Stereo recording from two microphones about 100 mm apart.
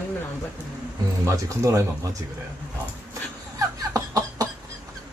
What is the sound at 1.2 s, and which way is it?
Speech, 35° right (ahead or behind).